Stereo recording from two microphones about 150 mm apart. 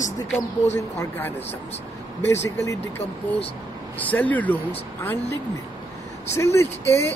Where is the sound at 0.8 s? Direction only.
15° left (ahead or behind).